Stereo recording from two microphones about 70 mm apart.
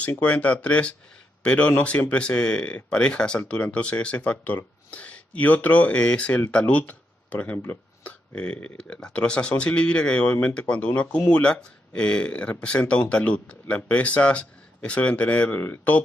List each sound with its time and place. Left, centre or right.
0.0 s speech: centre